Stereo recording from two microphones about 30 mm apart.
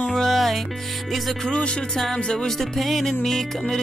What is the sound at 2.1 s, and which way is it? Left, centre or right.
Music, left.